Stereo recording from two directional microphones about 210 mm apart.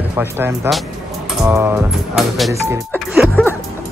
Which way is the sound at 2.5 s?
10° right (ahead or behind).